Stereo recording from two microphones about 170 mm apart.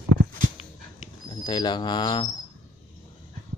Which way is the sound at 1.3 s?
25° left (ahead or behind).